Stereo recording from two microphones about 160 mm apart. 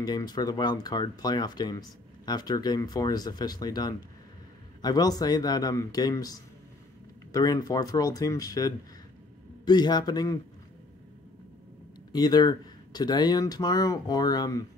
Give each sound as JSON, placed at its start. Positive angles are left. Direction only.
{"t": 0.0, "sound": "speech", "side_deg": 25}
{"t": 12.1, "sound": "speech", "side_deg": 25}